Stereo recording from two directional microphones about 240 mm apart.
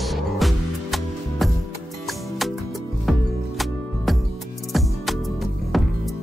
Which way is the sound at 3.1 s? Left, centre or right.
Centre.